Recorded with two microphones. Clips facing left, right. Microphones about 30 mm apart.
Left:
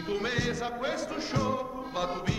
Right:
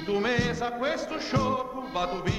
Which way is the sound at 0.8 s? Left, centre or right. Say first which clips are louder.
Right 3 dB; right.